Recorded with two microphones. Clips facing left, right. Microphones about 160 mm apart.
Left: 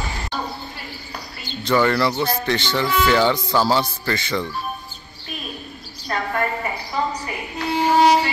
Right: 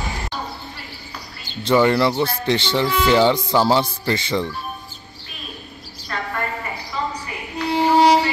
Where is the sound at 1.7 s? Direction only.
20° right (ahead or behind).